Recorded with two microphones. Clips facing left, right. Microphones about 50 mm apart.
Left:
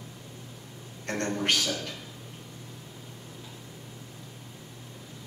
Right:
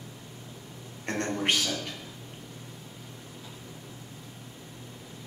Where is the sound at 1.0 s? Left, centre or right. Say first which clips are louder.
Even; right.